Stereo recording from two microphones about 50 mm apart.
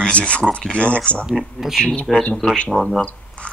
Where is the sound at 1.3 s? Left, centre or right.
Centre.